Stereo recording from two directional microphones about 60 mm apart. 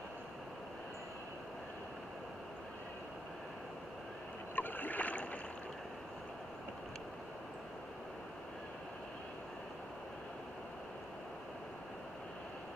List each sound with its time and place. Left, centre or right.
4.6 s rowboat: left